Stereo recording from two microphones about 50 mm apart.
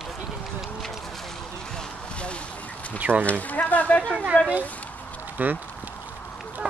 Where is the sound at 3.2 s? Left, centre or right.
Left.